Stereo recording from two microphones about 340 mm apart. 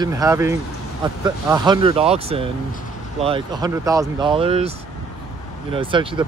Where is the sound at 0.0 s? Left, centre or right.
Centre.